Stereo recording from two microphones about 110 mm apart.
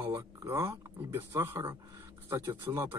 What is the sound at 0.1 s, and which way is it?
Speech, 30° right (ahead or behind).